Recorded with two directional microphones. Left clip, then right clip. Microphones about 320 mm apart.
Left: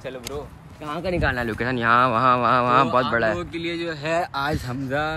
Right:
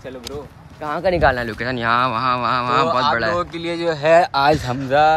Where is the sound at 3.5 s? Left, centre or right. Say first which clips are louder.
Right 6 dB; centre.